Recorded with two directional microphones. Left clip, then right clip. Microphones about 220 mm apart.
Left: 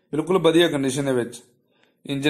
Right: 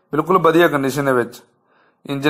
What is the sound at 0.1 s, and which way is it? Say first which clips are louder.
A man's voice: right 5 dB; 40° right (ahead or behind).